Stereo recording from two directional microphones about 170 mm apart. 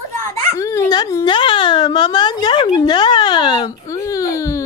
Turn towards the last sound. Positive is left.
turn(degrees=20)  # may be behind; listen again after turning